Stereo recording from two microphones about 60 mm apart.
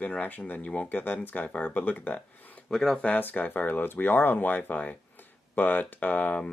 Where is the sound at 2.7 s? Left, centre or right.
Centre.